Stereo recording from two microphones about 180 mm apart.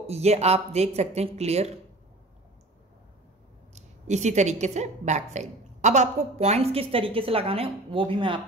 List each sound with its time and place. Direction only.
0.0 s a woman's voice: 35° right (ahead or behind)
3.7 s a woman's voice: 40° right (ahead or behind)